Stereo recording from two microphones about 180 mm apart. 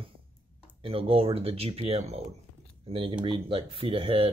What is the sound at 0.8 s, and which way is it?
Speech, 30° right (ahead or behind).